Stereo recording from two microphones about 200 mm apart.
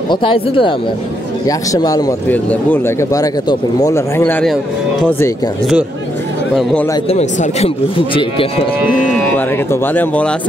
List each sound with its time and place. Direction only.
0.1 s speech: 25° left (ahead or behind); by 4.6 s 5° left (ahead or behind)
6.5 s speech: 5° left (ahead or behind)
7.1 s speech: 30° left (ahead or behind)
9.7 s speech: 10° left (ahead or behind)